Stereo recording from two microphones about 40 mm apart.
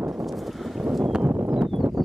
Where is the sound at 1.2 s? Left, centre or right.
Right.